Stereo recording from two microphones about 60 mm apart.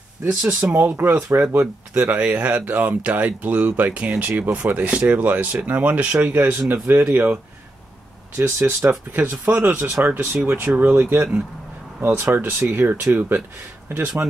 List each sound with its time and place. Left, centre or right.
0.3 s speech: right
0.7 s speech: right
2.1 s speech: right
8.4 s speech: right
9.2 s speech: right
11.0 s speech: right
12.0 s speech: right